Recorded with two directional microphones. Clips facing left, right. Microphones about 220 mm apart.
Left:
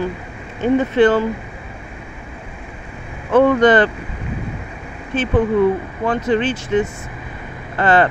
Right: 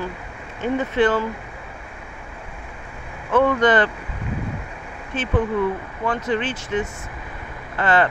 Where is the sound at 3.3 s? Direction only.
30° left (ahead or behind).